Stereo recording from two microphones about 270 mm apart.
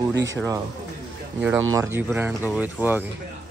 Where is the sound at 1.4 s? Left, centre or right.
Centre.